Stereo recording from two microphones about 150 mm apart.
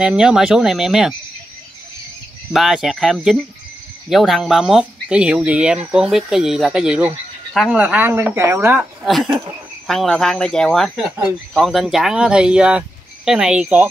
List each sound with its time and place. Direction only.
0.0 s speech: 5° right (ahead or behind)
2.5 s speech: centre (ahead or behind)
9.0 s speech: centre (ahead or behind)